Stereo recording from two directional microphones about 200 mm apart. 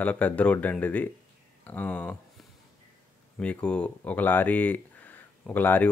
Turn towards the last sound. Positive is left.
turn(degrees=10)  # may be behind; listen again after turning